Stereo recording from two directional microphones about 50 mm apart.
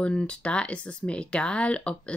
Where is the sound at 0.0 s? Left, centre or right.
Left.